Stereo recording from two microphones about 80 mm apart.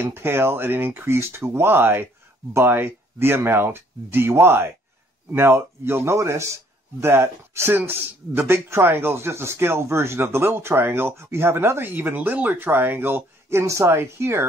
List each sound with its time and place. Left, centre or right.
0.0 s a man's voice: right